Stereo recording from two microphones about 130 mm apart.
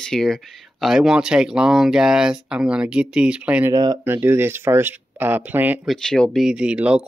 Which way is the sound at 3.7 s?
35° right (ahead or behind).